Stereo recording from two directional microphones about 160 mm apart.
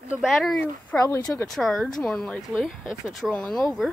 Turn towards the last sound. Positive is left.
turn(degrees=0)  # may be behind; listen again after turning